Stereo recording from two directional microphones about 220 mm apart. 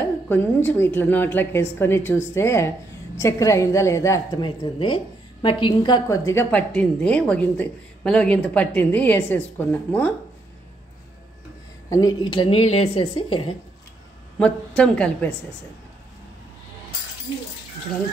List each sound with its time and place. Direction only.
0.0 s a sound: 10° left (ahead or behind)
0.7 s a woman's voice: 10° left (ahead or behind)
11.9 s a woman's voice: 15° left (ahead or behind)
14.4 s a woman's voice: 5° left (ahead or behind)